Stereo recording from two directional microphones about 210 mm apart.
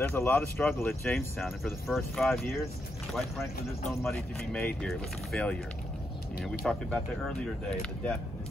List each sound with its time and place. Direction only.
0.0 s speech: 10° left (ahead or behind)
2.2 s speech: 10° left (ahead or behind)
6.6 s speech: centre (ahead or behind)